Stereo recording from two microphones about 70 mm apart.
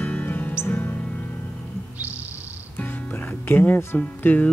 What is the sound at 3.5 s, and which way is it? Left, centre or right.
Speech, left.